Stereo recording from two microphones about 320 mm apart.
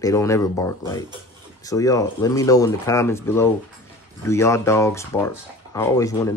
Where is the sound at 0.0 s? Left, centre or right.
Centre.